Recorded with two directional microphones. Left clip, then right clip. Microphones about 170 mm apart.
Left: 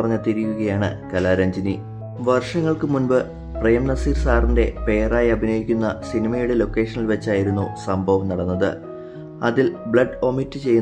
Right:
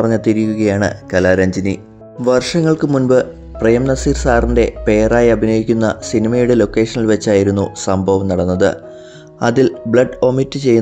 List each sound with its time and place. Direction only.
0.0 s speech: 35° right (ahead or behind)